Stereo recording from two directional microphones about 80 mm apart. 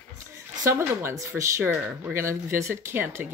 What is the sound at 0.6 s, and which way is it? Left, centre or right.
Speech, right.